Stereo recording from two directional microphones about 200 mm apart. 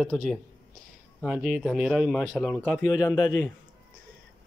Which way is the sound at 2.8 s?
15° left (ahead or behind).